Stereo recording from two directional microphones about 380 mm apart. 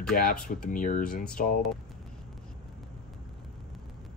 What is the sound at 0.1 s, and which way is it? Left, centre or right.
Speech, left.